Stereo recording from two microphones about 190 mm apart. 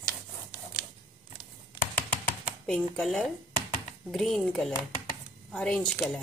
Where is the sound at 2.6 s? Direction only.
5° left (ahead or behind).